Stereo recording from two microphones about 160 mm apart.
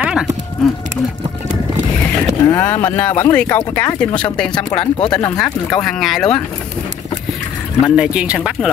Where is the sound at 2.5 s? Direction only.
15° left (ahead or behind).